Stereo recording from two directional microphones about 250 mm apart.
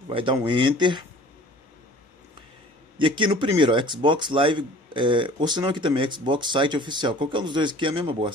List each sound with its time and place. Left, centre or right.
0.1 s speech: centre
3.0 s speech: centre